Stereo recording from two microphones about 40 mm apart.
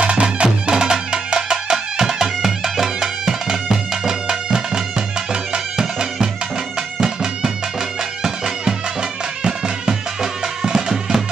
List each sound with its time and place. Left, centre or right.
0.0 s music: right; by 11.2 s centre